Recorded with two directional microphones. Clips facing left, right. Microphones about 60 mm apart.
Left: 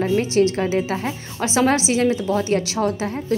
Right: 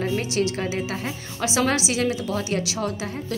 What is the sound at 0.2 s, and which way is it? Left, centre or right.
A woman's voice, left.